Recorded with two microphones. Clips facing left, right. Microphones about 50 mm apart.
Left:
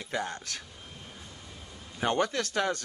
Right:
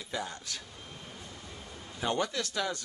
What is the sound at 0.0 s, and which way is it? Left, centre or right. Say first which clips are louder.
Speech: left 4 dB; left.